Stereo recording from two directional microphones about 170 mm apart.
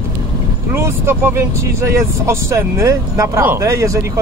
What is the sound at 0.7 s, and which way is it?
Speech, 15° right (ahead or behind).